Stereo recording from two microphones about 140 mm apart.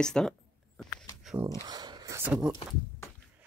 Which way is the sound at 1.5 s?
30° right (ahead or behind).